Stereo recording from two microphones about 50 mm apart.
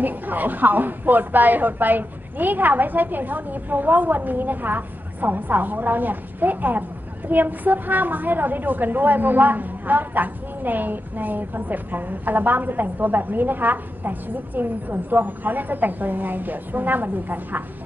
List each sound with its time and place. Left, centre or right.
0.0 s a woman's voice: right